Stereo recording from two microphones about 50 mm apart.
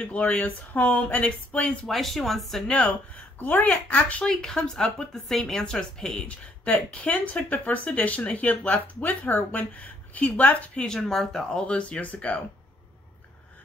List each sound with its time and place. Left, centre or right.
0.0 s speech: left
1.9 s speech: centre
3.3 s speech: left
4.2 s speech: centre
6.2 s speech: left
10.7 s speech: centre
11.0 s speech: centre
11.5 s speech: left